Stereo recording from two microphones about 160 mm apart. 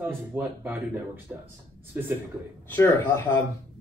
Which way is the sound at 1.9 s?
15° right (ahead or behind).